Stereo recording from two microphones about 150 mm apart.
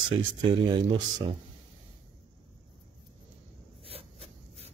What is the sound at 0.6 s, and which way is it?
Speech, 30° right (ahead or behind).